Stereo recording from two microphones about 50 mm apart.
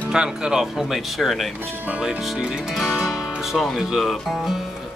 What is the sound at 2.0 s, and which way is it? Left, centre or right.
Speech, centre.